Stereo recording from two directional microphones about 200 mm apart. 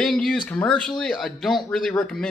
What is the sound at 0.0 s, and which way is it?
Speech, 5° left (ahead or behind).